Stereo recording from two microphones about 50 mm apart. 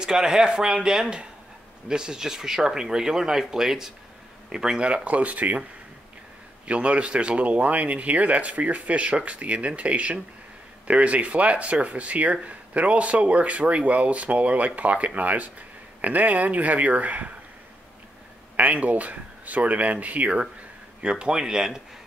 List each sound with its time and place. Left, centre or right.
0.0 s speech: centre; by 5.7 s right
6.7 s speech: right
18.6 s speech: right; by 21.8 s centre